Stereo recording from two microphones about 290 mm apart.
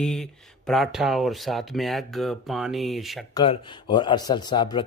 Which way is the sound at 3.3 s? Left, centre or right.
Centre.